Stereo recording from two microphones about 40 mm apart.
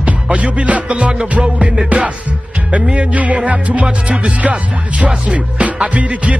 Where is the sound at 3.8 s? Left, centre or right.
Right.